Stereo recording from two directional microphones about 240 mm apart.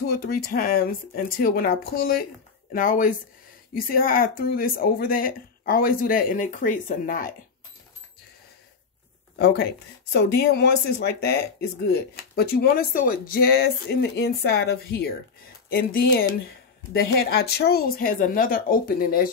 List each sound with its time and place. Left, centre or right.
0.1 s speech: left
9.4 s speech: left